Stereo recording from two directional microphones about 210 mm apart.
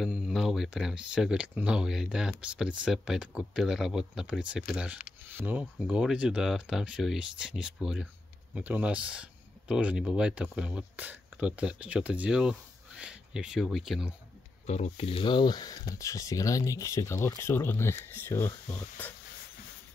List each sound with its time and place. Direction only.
0.0 s speech: centre (ahead or behind)
14.7 s speech: 30° left (ahead or behind); by 19.1 s 10° left (ahead or behind)